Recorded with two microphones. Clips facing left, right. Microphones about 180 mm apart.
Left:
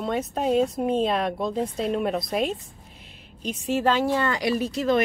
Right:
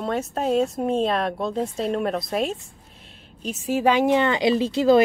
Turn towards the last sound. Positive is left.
turn(degrees=-30)  # may be behind; listen again after turning